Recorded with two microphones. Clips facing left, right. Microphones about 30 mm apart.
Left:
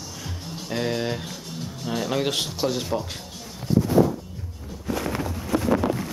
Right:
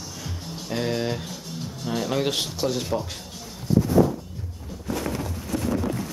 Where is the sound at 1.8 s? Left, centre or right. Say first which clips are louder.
Even; centre.